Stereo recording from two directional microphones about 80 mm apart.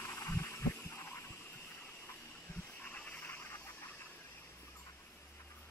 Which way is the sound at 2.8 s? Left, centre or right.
Centre.